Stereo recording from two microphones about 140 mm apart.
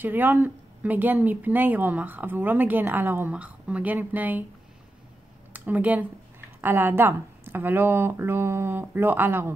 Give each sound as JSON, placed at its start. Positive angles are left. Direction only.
{"t": 0.0, "sound": "speech", "side_deg": -15}
{"t": 5.5, "sound": "speech", "side_deg": -10}